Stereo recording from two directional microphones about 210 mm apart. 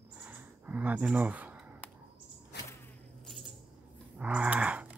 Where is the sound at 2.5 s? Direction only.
50° left (ahead or behind).